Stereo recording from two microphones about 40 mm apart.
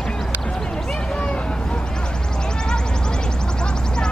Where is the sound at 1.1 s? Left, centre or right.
Left.